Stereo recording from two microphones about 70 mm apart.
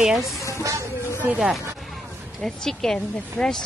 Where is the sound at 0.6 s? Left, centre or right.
Right.